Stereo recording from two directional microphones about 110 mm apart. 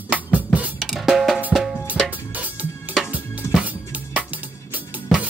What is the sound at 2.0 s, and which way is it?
Music, 15° right (ahead or behind).